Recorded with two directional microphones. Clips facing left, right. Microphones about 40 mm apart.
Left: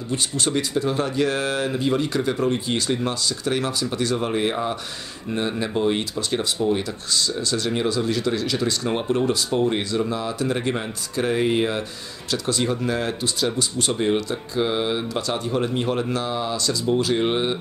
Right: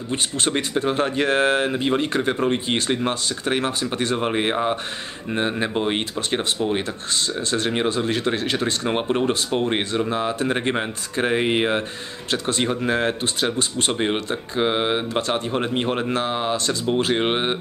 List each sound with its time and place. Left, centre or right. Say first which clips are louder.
0.1 s speech: right 1 dB; right